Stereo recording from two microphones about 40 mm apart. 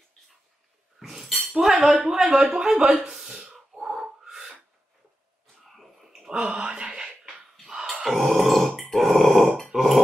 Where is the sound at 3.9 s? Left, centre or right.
Centre.